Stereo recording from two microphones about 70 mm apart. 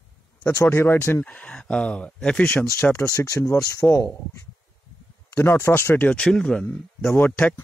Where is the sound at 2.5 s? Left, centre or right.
Left.